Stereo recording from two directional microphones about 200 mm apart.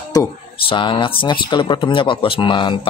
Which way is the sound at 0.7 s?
25° left (ahead or behind).